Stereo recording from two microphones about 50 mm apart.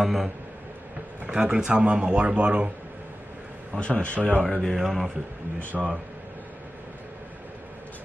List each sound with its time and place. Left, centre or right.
0.0 s a man's voice: centre
1.2 s speech: centre
3.7 s speech: left
4.4 s speech: centre
4.7 s a man's voice: centre